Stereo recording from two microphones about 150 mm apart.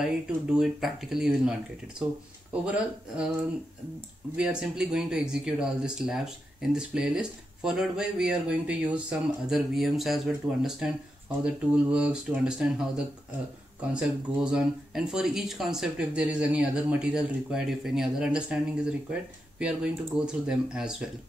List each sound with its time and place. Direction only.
0.0 s speech: 5° right (ahead or behind)
4.4 s speech: 5° right (ahead or behind)